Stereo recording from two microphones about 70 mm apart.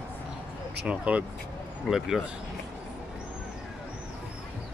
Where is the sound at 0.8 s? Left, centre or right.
Centre.